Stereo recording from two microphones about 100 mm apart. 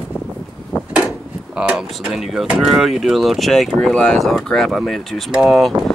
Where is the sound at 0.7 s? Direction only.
35° left (ahead or behind).